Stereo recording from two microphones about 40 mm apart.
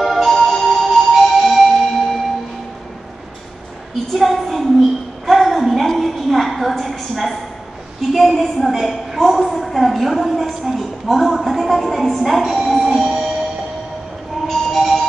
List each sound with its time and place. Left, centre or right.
0.0 s music: centre
4.1 s a sound: centre
12.4 s music: centre
12.8 s music: centre
14.5 s music: centre